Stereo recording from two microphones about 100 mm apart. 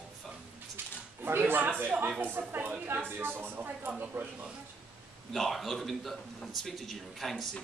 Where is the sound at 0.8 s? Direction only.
20° right (ahead or behind).